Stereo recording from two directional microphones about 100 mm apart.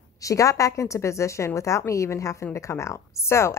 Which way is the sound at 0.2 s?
35° left (ahead or behind).